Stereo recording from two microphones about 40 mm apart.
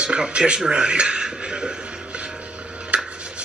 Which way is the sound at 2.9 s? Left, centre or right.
Right.